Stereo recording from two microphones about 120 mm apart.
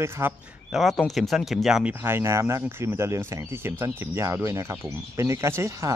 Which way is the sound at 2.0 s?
20° right (ahead or behind).